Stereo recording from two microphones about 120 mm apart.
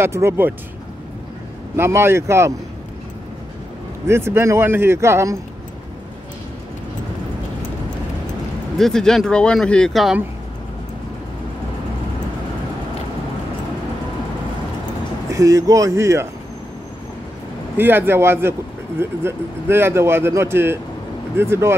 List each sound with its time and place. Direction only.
0.0 s speech: 20° right (ahead or behind)
1.8 s speech: 20° right (ahead or behind)
4.1 s speech: 20° right (ahead or behind)
8.7 s speech: 5° left (ahead or behind)
15.3 s speech: 30° right (ahead or behind)
17.7 s speech: 20° right (ahead or behind)